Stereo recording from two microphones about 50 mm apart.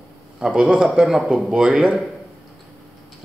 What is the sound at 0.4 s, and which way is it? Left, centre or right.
Speech, centre.